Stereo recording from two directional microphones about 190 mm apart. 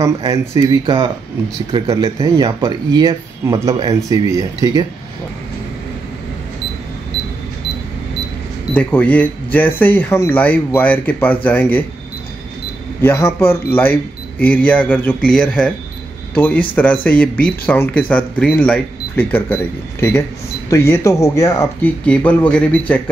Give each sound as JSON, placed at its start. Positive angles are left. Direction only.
{"t": 0.0, "sound": "speech", "side_deg": -20}
{"t": 8.7, "sound": "speech", "side_deg": 10}
{"t": 13.0, "sound": "speech", "side_deg": 10}